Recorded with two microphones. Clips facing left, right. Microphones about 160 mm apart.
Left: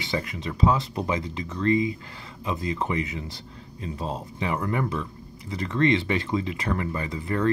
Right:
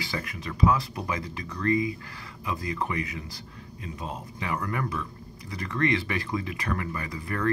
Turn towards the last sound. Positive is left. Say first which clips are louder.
# left 4 dB
turn(degrees=25)  # may be behind; listen again after turning